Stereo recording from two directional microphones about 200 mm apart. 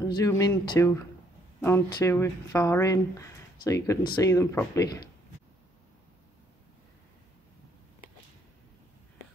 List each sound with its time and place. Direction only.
0.1 s speech: 15° left (ahead or behind)